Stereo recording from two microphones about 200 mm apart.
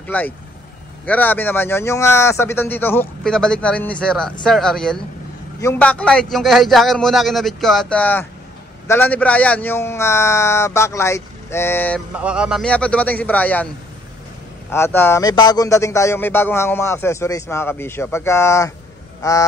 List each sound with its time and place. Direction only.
0.0 s speech: 5° left (ahead or behind)
12.2 s speech: 5° right (ahead or behind)
14.7 s speech: 10° left (ahead or behind)